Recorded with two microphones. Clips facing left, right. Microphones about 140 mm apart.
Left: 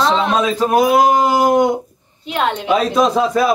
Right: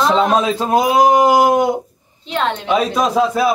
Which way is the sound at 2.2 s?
10° left (ahead or behind).